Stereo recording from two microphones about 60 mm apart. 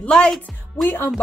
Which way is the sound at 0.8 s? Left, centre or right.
Left.